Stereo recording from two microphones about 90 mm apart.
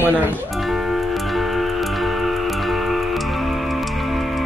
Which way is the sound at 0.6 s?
5° right (ahead or behind).